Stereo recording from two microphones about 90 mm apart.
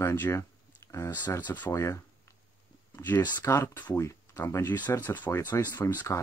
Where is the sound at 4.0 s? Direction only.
30° left (ahead or behind).